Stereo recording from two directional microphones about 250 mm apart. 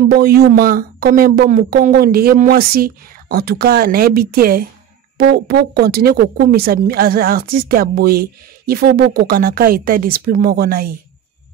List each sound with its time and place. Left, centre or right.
0.1 s speech: right